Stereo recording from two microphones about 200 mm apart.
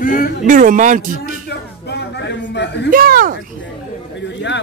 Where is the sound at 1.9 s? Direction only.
60° left (ahead or behind).